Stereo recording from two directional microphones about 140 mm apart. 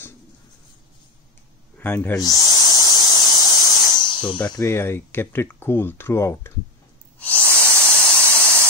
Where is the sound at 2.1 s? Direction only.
25° left (ahead or behind).